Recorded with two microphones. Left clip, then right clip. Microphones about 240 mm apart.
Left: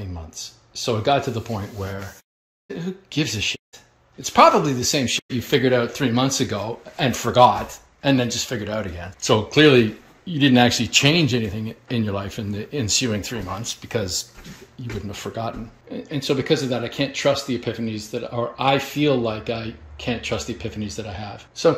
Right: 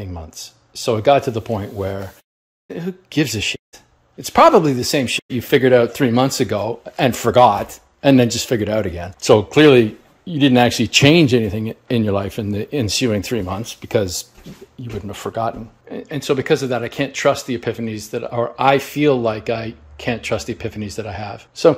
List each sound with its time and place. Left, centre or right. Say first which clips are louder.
0.7 s speech: right 6 dB; centre
8.2 s speech: right 7 dB; right